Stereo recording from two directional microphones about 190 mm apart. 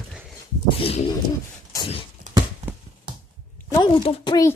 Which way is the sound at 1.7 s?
25° left (ahead or behind).